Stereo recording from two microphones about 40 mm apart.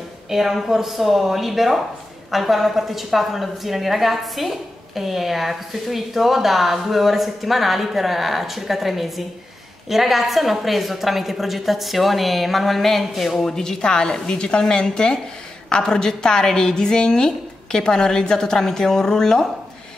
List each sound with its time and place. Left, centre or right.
0.3 s a woman's voice: centre